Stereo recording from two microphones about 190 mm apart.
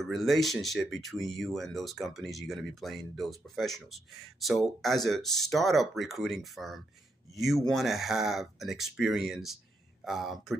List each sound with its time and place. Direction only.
0.0 s speech: centre (ahead or behind)
5.2 s speech: 20° left (ahead or behind)
5.5 s speech: centre (ahead or behind)